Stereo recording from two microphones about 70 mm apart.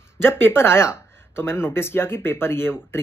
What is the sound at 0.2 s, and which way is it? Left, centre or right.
Speech, left.